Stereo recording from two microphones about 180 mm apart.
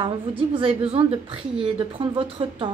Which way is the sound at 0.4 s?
30° right (ahead or behind).